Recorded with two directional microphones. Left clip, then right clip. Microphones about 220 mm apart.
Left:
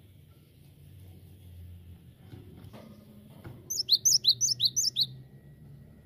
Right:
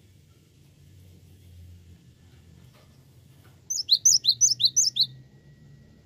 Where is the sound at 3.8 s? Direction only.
20° left (ahead or behind).